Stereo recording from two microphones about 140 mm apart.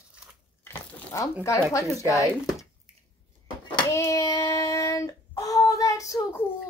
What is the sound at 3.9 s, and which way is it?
Child singing, 20° left (ahead or behind).